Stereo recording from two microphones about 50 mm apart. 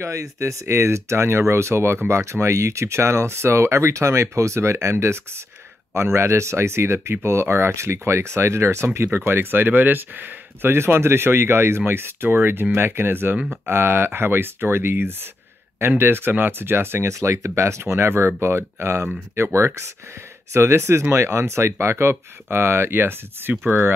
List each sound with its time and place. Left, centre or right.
0.0 s speech: right
0.7 s speech: right
17.1 s speech: right